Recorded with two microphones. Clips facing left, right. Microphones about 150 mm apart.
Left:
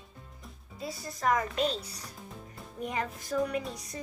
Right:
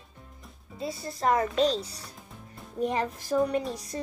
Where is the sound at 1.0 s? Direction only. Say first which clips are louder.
Right 3 dB; 30° right (ahead or behind).